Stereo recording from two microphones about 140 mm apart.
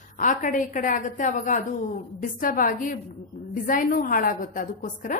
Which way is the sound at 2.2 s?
85° left.